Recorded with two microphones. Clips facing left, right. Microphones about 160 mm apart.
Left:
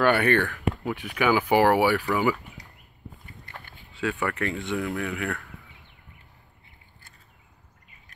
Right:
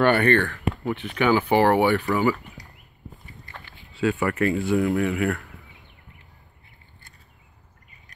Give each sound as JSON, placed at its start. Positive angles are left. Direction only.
{"t": 0.0, "sound": "speech", "side_deg": 5}
{"t": 3.4, "sound": "a sound", "side_deg": 50}
{"t": 3.9, "sound": "speech", "side_deg": 0}